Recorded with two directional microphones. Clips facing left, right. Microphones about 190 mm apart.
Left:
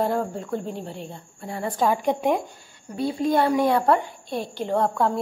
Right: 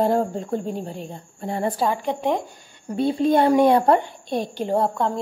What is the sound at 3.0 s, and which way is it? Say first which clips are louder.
A woman's voice: right 3 dB; 25° right (ahead or behind).